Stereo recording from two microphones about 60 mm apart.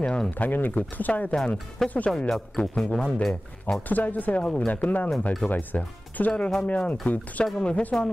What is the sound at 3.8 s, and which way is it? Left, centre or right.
Speech, left.